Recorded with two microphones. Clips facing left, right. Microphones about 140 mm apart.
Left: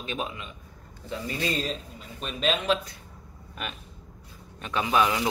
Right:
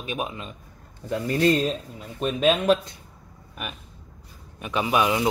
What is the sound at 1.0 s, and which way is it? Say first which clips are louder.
Speech: right 9 dB; 50° right (ahead or behind).